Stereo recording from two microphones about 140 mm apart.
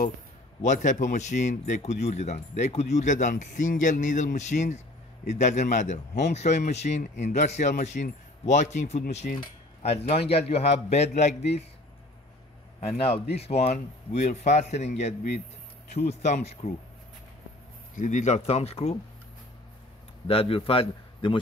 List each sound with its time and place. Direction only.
0.7 s speech: 60° left (ahead or behind)
9.8 s speech: 45° left (ahead or behind)
12.8 s speech: 45° left (ahead or behind)
17.9 s speech: 60° left (ahead or behind)
20.2 s speech: 45° left (ahead or behind)